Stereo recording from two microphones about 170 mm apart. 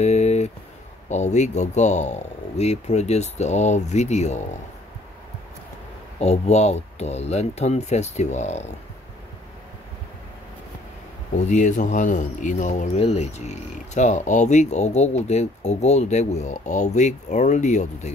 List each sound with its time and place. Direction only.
0.0 s a sound: 40° left (ahead or behind)
1.0 s speech: 45° left (ahead or behind)
6.1 s speech: 40° left (ahead or behind)
11.3 s speech: 45° left (ahead or behind)